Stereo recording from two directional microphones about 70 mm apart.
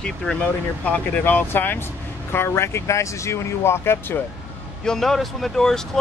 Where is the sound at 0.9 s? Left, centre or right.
Left.